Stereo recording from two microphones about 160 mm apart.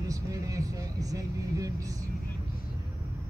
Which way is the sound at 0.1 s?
20° right (ahead or behind).